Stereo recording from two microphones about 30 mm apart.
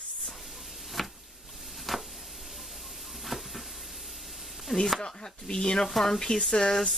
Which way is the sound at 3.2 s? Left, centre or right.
Centre.